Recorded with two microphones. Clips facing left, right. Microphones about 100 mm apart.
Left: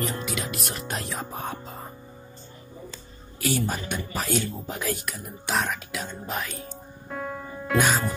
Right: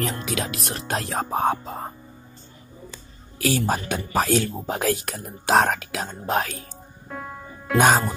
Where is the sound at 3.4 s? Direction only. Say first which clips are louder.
Right 4 dB; 90° right.